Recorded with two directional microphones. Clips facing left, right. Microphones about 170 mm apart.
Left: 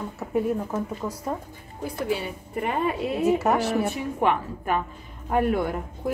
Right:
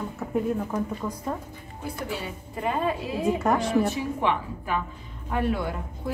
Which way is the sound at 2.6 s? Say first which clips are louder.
Left 1 dB; 65° left (ahead or behind).